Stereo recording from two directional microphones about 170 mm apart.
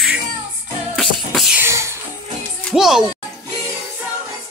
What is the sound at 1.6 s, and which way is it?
Music, 15° right (ahead or behind).